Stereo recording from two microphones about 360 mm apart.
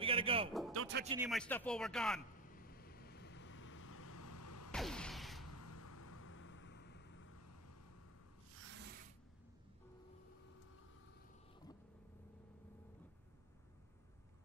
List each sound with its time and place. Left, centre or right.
0.0 s a sound: centre
0.5 s music: centre
0.7 s music: right
1.0 s speech: centre
1.3 s speech: centre
2.3 s vehicle: left
4.7 s a sound: centre
5.4 s vehicle: left
7.3 s vehicle: left
8.6 s rub: right